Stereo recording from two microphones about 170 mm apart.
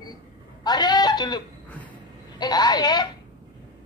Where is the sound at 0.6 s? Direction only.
25° left (ahead or behind).